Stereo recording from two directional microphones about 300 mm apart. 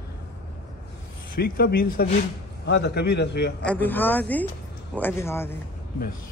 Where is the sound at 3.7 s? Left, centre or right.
Centre.